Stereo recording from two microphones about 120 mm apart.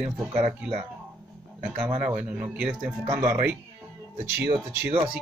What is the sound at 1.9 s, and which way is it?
Speech, 10° right (ahead or behind).